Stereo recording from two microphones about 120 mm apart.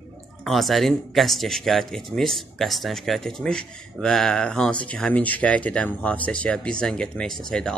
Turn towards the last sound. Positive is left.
turn(degrees=5)  # may be behind; listen again after turning